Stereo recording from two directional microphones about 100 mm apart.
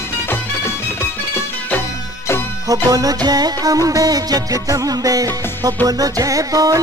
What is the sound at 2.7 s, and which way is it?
Music, 35° right (ahead or behind).